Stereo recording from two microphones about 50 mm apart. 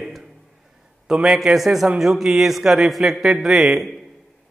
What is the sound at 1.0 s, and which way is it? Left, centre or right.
A man's voice, centre.